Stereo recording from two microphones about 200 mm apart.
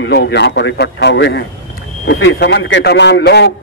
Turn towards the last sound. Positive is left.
turn(degrees=55)  # may be behind; listen again after turning